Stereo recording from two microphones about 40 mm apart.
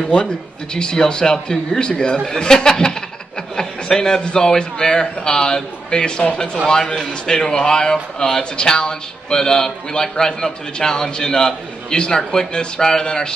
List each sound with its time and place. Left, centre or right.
0.7 s a man's voice: left